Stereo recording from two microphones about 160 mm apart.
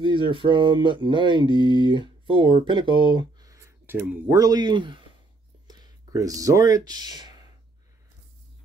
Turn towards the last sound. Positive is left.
turn(degrees=-25)  # may be behind; listen again after turning